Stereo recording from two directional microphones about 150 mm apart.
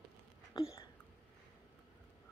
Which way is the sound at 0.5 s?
25° left (ahead or behind).